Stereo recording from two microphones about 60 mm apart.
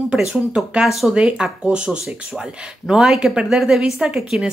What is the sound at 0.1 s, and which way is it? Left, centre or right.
Speech, centre.